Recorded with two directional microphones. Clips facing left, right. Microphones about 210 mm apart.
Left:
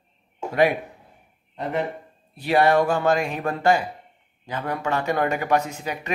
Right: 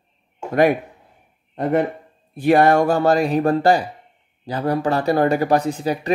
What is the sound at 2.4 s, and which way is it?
Speech, 50° right (ahead or behind).